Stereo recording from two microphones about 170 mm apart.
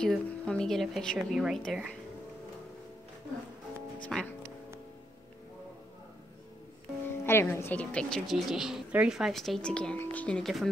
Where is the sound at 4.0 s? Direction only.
5° left (ahead or behind).